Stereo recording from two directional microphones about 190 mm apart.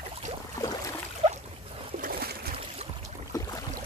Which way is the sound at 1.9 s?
50° right (ahead or behind).